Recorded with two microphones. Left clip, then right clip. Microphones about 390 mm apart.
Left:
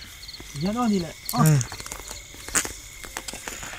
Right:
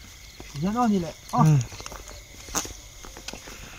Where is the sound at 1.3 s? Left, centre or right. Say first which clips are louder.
Right 1 dB; centre.